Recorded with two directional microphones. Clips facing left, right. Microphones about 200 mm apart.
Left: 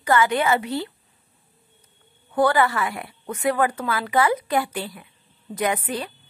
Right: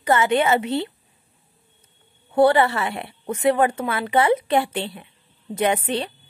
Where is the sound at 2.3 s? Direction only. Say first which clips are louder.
Right 3 dB; 25° right (ahead or behind).